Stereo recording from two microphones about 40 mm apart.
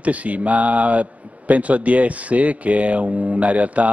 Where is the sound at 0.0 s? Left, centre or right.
Right.